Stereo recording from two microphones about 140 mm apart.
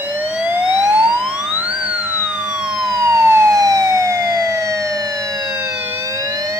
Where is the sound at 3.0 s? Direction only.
20° right (ahead or behind).